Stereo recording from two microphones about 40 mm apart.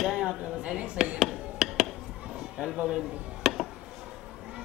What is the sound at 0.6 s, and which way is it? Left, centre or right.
Speech, right.